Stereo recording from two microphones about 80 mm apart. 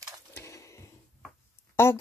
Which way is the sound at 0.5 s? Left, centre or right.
Left.